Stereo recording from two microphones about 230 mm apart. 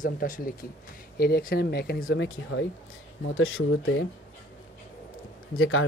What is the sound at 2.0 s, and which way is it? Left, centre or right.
Speech, left.